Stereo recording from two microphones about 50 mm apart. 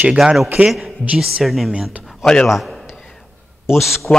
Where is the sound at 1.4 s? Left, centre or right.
Centre.